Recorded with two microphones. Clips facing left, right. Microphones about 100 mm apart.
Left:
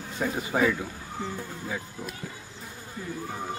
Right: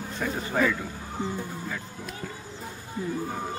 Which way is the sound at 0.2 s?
15° left (ahead or behind).